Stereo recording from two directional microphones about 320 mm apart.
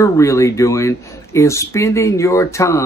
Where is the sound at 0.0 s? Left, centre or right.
Centre.